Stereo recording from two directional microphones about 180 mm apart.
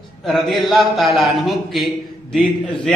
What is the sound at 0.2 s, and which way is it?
A man's voice, centre (ahead or behind).